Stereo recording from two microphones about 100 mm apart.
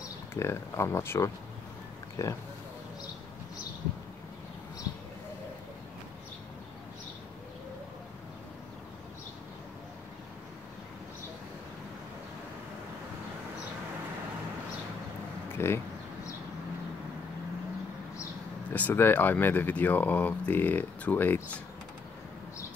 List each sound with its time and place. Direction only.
0.3 s speech: 25° left (ahead or behind)
15.5 s a sound: 25° left (ahead or behind)
18.7 s speech: 20° left (ahead or behind)